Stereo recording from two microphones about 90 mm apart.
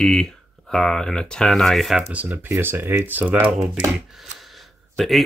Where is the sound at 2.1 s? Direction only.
25° right (ahead or behind).